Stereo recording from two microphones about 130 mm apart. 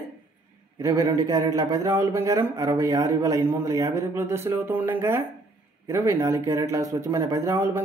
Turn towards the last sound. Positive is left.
turn(degrees=-20)  # may be behind; listen again after turning